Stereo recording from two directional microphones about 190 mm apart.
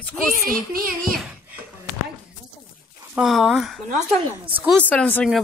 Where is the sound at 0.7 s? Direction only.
50° right (ahead or behind).